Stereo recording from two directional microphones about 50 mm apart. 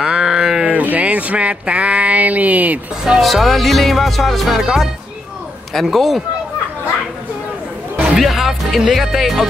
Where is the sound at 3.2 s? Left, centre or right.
Centre.